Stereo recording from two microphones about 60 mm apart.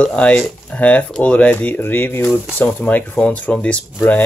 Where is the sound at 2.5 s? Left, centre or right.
Left.